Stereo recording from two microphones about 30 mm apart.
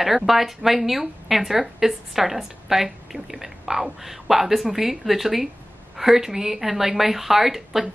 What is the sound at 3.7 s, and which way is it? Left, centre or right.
Speech, right.